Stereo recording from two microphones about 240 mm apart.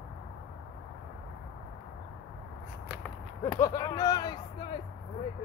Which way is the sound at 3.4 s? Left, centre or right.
Centre.